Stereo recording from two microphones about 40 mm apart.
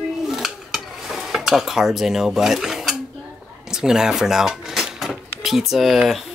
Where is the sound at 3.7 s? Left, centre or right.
Centre.